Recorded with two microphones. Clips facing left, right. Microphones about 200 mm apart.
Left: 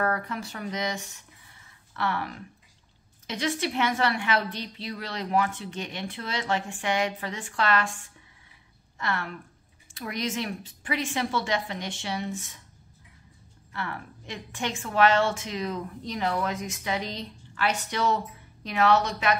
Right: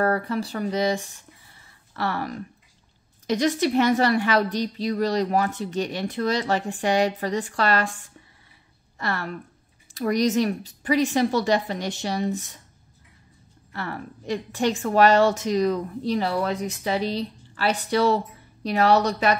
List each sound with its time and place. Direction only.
0.0 s a woman's voice: 35° right (ahead or behind)
13.7 s a woman's voice: 40° right (ahead or behind)